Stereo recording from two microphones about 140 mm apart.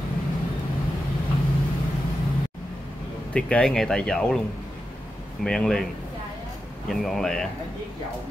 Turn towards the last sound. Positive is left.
turn(degrees=5)  # may be behind; listen again after turning